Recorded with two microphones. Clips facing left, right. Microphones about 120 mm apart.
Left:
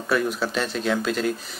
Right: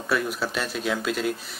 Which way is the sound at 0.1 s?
5° right (ahead or behind).